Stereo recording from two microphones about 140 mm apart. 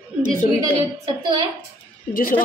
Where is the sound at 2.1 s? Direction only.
85° left.